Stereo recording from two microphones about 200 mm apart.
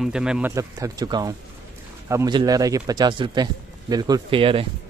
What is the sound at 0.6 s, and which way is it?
Speech, 15° right (ahead or behind).